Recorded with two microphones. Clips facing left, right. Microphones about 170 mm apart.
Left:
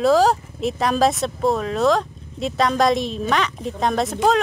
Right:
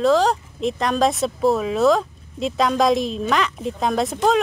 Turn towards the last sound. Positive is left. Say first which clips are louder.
# even
turn(degrees=0)  # may be behind; listen again after turning